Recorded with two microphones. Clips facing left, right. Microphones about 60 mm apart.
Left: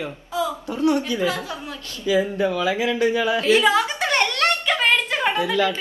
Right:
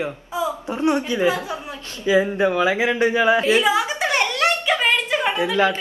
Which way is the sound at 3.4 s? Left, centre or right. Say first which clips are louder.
Left 1 dB; centre.